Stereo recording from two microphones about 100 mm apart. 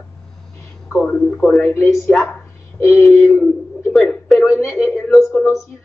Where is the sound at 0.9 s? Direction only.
5° left (ahead or behind).